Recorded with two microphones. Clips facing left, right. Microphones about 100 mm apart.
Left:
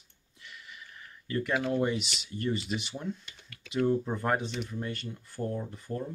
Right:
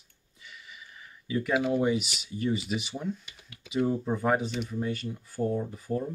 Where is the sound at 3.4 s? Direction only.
15° right (ahead or behind).